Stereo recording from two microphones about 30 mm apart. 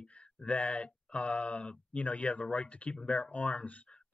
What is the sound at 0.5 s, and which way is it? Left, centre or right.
Speech, left.